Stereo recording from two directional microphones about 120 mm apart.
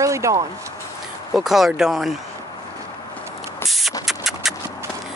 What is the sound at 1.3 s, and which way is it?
Speech, centre (ahead or behind).